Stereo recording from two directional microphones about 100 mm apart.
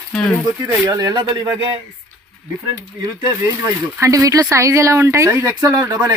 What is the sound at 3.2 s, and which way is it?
Speech, 35° right (ahead or behind).